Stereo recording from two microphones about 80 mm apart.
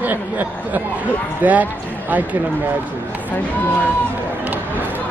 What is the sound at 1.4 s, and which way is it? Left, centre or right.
Speech, right.